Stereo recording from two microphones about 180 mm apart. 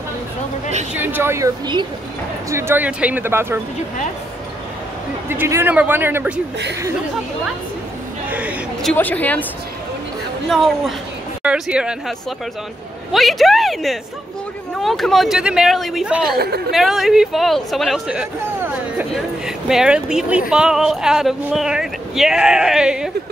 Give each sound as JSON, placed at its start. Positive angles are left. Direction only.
{"t": 0.9, "sound": "speech", "side_deg": -10}
{"t": 5.3, "sound": "speech", "side_deg": -10}
{"t": 8.3, "sound": "a sound", "side_deg": -10}
{"t": 8.9, "sound": "a woman's voice", "side_deg": 10}
{"t": 11.4, "sound": "speech", "side_deg": -5}
{"t": 13.1, "sound": "speech", "side_deg": 0}
{"t": 16.3, "sound": "speech", "side_deg": -60}
{"t": 16.7, "sound": "speech", "side_deg": 0}